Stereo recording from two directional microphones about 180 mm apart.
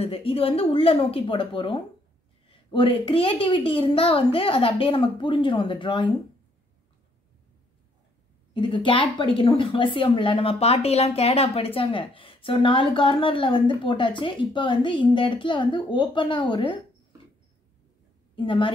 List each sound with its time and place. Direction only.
0.0 s a woman's voice: 30° left (ahead or behind)
8.5 s a woman's voice: 30° left (ahead or behind)
18.3 s a woman's voice: 30° left (ahead or behind)